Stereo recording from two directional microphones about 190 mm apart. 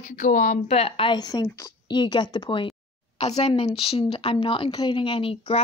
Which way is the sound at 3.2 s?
35° left (ahead or behind).